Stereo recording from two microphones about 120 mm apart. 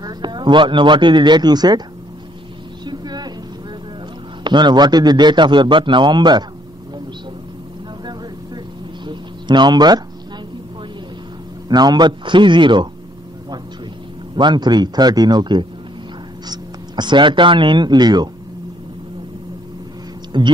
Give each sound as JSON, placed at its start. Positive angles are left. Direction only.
{"t": 0.0, "sound": "a man's voice", "side_deg": -40}
{"t": 2.8, "sound": "a sound", "side_deg": -35}
{"t": 4.5, "sound": "a man's voice", "side_deg": -40}
{"t": 9.0, "sound": "a sound", "side_deg": -40}
{"t": 11.7, "sound": "a man's voice", "side_deg": -35}
{"t": 14.3, "sound": "a man's voice", "side_deg": -40}
{"t": 20.3, "sound": "a man's voice", "side_deg": -40}